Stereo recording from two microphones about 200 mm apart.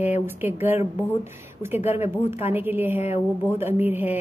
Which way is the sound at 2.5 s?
10° right (ahead or behind).